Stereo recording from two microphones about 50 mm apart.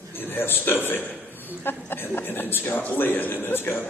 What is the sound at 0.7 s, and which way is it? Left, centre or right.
Speech, left.